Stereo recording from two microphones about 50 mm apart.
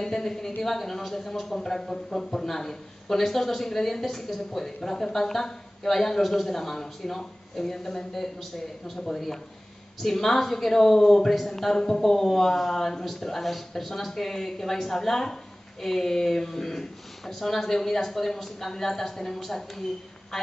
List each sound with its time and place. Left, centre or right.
0.0 s speech: centre
10.0 s speech: centre